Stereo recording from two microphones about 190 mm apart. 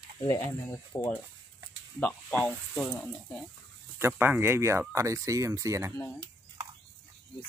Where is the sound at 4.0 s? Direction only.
10° right (ahead or behind).